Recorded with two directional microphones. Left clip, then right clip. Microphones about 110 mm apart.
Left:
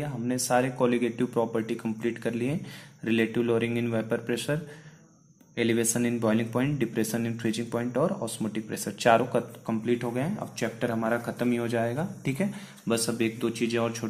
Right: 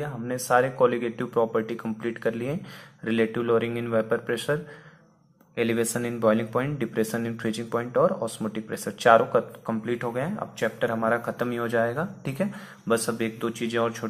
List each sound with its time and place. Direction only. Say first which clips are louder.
0.0 s speech: even; 20° left (ahead or behind)
5.6 s speech: right 1 dB; 15° left (ahead or behind)
12.3 s speech: right 1 dB; 15° left (ahead or behind)